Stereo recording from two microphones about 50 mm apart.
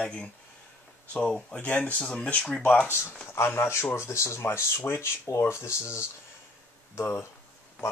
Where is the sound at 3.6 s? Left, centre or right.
Left.